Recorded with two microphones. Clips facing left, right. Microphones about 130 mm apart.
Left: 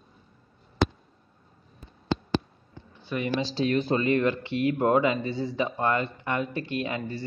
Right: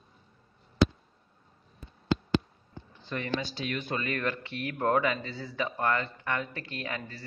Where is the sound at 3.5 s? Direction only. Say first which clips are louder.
Left 9 dB; 35° left (ahead or behind).